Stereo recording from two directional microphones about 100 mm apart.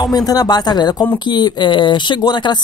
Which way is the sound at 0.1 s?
40° left (ahead or behind).